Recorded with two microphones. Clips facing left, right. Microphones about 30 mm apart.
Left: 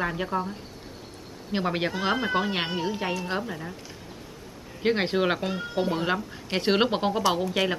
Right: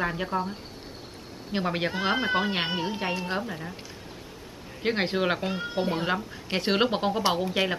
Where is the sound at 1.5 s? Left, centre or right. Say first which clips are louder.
Left 1 dB; centre.